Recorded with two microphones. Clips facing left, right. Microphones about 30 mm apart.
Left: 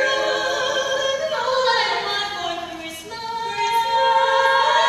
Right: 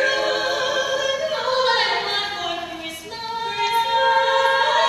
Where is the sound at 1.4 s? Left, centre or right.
Right.